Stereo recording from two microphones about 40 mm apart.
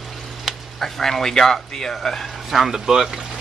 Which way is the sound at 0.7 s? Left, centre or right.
Centre.